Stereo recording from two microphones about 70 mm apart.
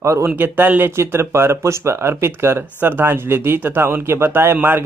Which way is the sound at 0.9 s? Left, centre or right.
Right.